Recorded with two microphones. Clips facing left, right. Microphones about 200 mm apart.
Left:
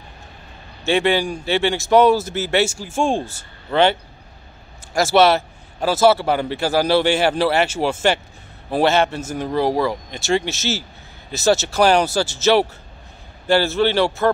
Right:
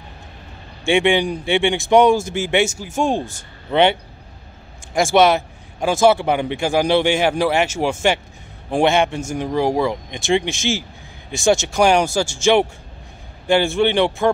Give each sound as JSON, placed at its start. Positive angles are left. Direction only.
{"t": 1.1, "sound": "a man's voice", "side_deg": -15}
{"t": 4.9, "sound": "a man's voice", "side_deg": -15}